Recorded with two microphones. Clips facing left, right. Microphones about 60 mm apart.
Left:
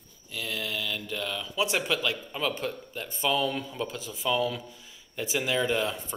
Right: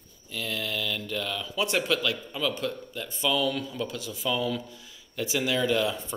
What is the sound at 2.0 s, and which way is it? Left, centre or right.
Speech, left.